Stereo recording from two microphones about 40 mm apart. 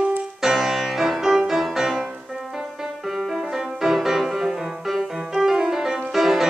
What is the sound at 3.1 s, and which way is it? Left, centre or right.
Music, centre.